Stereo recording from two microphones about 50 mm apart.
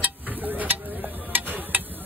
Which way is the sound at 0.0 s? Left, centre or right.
Right.